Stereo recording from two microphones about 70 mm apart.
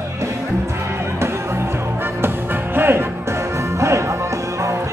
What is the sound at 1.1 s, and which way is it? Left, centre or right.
Music, right.